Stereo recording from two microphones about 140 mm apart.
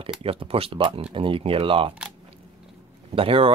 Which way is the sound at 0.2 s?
45° right (ahead or behind).